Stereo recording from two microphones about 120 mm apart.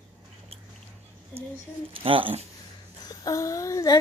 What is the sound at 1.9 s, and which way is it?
Speech, 50° right (ahead or behind).